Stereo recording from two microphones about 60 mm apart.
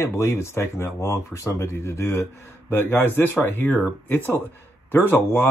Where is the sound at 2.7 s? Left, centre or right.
Left.